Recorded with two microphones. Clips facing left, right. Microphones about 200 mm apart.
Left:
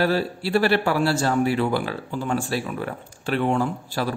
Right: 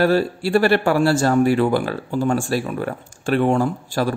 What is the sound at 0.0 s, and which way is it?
Speech, 45° right (ahead or behind).